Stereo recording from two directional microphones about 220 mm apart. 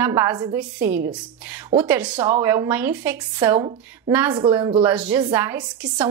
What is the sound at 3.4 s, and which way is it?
Speech, 20° right (ahead or behind).